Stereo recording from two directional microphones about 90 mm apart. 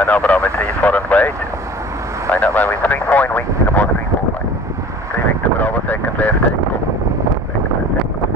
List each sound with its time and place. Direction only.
0.0 s speech: 15° left (ahead or behind)
2.3 s speech: 20° left (ahead or behind)
5.6 s vehicle: 20° left (ahead or behind)